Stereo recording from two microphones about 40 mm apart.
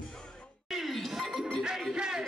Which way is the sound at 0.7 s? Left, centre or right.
Centre.